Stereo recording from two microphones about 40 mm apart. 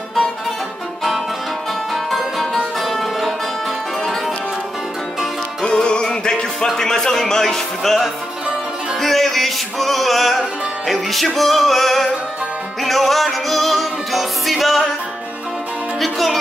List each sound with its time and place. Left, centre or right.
2.0 s music: centre
5.7 s music: left
6.8 s speech: centre
9.0 s music: centre
16.0 s music: centre